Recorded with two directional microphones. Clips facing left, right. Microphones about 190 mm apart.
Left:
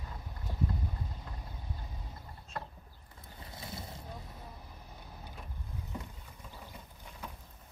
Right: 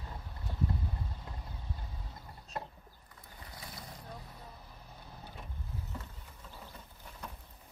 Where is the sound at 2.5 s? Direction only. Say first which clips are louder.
Right 1 dB; 20° right (ahead or behind).